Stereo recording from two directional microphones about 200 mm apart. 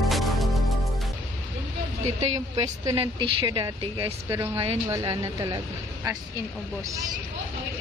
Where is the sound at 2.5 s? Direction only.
20° right (ahead or behind).